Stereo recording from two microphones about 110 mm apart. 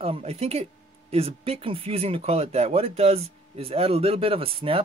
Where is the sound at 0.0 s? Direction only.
65° right (ahead or behind).